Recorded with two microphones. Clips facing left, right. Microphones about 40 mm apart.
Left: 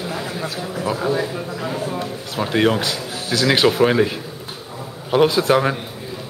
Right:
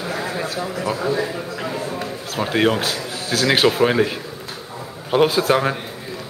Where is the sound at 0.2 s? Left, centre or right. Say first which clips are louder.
Right 2 dB; right.